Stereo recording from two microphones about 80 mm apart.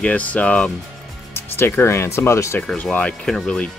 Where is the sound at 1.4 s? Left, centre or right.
Left.